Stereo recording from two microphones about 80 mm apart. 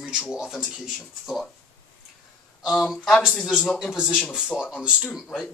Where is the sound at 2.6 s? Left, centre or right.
Centre.